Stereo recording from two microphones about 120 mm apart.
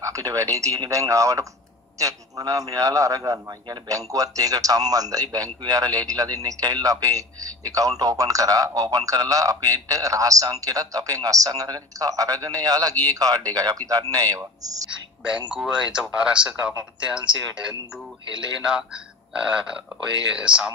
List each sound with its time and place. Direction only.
0.0 s a man's voice: 30° right (ahead or behind)
15.5 s speech: 5° right (ahead or behind)
18.6 s speech: 5° right (ahead or behind)